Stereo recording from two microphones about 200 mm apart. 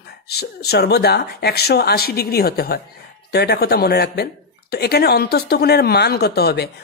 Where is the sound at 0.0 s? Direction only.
55° left (ahead or behind).